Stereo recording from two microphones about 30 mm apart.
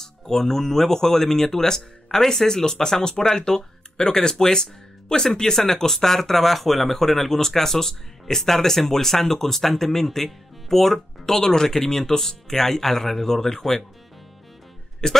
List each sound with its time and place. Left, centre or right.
0.0 s speech: centre
15.0 s speech: left